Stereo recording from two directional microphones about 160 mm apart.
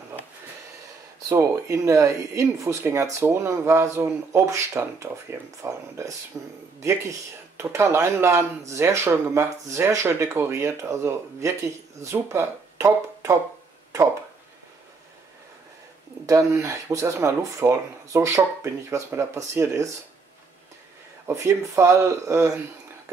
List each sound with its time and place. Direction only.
1.3 s speech: 15° right (ahead or behind)
16.3 s speech: 20° right (ahead or behind)
21.3 s speech: 20° right (ahead or behind)